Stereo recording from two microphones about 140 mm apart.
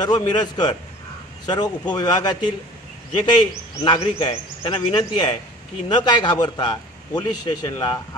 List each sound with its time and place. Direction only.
0.0 s a man's voice: 30° left (ahead or behind)